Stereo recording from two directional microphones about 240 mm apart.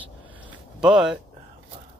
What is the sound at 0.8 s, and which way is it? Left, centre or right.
Speech, centre.